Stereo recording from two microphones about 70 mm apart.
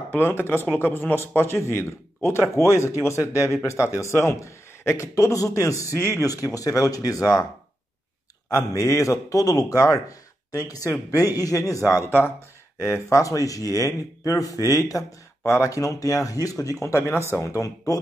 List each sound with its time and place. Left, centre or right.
0.1 s a man's voice: left
8.5 s a man's voice: left